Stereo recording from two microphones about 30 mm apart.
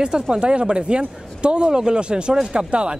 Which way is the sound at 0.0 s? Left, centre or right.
Right.